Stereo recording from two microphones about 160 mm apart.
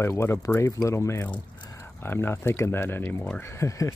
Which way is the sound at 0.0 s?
15° left (ahead or behind).